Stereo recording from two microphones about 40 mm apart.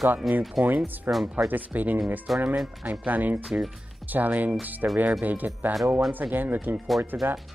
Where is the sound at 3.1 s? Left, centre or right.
Right.